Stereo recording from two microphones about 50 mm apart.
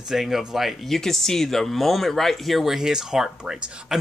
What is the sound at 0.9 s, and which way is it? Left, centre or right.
Speech, centre.